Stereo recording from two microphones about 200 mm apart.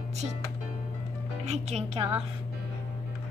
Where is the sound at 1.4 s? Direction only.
35° right (ahead or behind).